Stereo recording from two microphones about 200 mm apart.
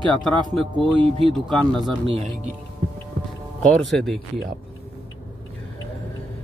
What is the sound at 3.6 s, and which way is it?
Speech, centre (ahead or behind).